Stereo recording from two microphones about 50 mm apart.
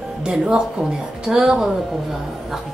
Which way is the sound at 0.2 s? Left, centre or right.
Centre.